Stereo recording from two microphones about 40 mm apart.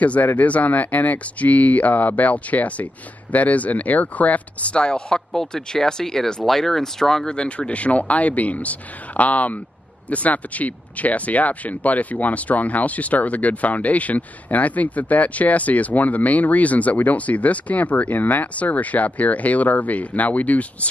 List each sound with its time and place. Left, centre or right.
0.0 s speech: left; by 7.2 s centre
7.2 s speech: left